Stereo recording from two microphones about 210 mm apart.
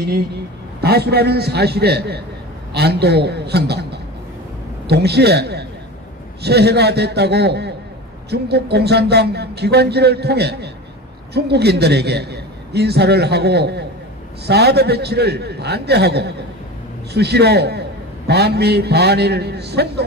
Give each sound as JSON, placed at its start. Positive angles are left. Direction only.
{"t": 0.7, "sound": "a man's voice", "side_deg": -50}
{"t": 4.8, "sound": "a man's voice", "side_deg": -50}